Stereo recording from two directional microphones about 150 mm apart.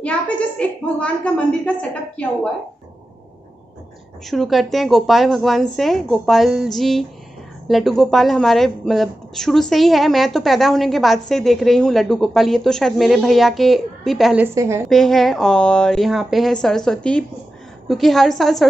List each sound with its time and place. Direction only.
0.6 s a woman's voice: 10° left (ahead or behind)
4.3 s a woman's voice: centre (ahead or behind)
14.4 s a woman's voice: 20° right (ahead or behind)
14.9 s a woman's voice: centre (ahead or behind)